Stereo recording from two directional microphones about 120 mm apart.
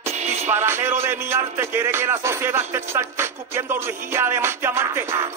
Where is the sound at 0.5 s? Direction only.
20° right (ahead or behind).